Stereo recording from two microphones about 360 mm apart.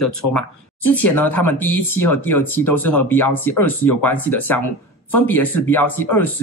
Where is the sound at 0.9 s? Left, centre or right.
Centre.